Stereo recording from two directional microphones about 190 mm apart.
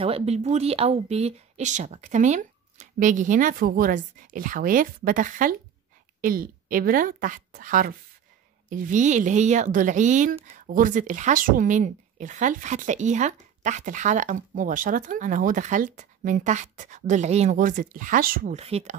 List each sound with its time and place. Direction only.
0.0 s a woman's voice: 30° right (ahead or behind); by 18.6 s 45° right (ahead or behind)
18.6 s a woman's voice: 35° right (ahead or behind)